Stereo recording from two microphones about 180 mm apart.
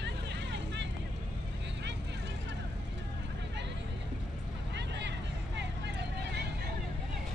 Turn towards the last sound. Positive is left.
turn(degrees=-70)  # may be behind; listen again after turning